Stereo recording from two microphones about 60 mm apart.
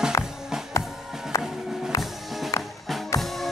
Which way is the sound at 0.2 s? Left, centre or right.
Left.